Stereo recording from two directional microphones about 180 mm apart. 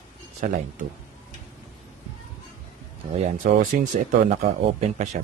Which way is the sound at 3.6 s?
45° right (ahead or behind).